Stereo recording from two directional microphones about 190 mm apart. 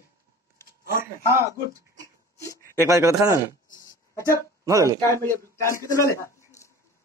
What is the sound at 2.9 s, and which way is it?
Speech, 15° right (ahead or behind).